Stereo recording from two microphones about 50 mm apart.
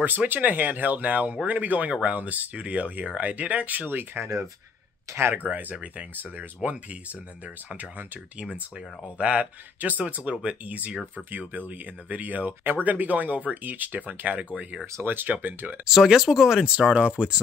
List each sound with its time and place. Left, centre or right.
0.0 s speech: right
5.5 s speech: right
15.0 s speech: right
15.8 s speech: centre